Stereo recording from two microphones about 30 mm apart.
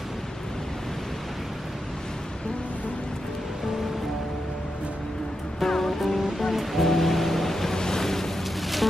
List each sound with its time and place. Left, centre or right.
5.6 s music: centre
7.8 s ocean: centre